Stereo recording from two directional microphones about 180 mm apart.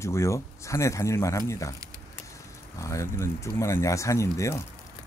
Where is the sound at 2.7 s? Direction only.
15° left (ahead or behind).